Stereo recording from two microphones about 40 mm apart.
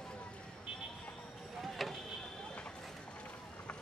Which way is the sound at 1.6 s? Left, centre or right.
Centre.